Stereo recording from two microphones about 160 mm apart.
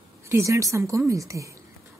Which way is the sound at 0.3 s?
20° right (ahead or behind).